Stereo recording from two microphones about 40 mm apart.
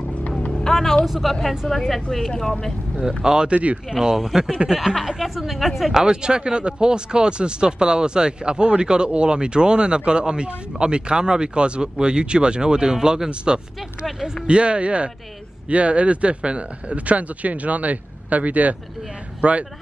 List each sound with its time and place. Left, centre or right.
0.5 s music: centre
1.0 s speech: centre
3.1 s speech: centre
3.5 s speech: right
3.9 s speech: centre
5.9 s speech: right